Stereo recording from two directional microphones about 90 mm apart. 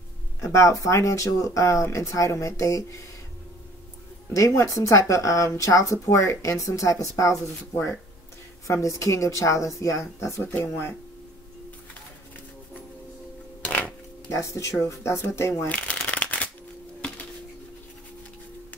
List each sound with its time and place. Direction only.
0.4 s speech: 35° left (ahead or behind)
4.7 s speech: 35° left (ahead or behind)
13.7 s a sound: 15° left (ahead or behind)
14.3 s speech: 35° left (ahead or behind)
15.6 s shuffling cards: 15° left (ahead or behind)